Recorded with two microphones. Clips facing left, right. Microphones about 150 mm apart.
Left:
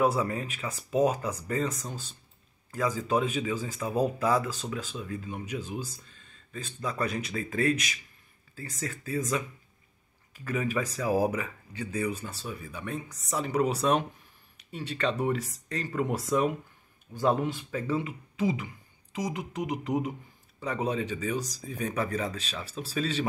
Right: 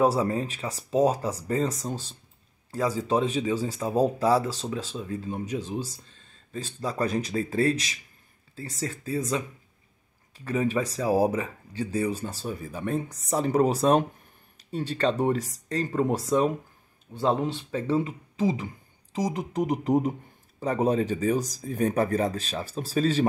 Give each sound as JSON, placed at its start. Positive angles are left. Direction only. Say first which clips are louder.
{"t": 0.0, "sound": "speech", "louder": "right 3 dB", "side_deg": -30}